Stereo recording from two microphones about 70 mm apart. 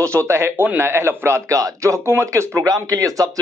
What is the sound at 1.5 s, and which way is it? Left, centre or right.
A man's voice, right.